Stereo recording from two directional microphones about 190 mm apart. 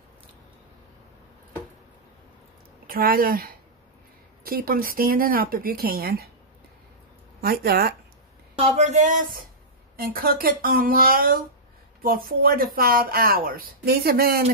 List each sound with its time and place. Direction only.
2.9 s speech: 50° right (ahead or behind)
7.4 s speech: 55° right (ahead or behind)
8.5 s a woman's voice: 35° right (ahead or behind); by 14.4 s 55° right (ahead or behind)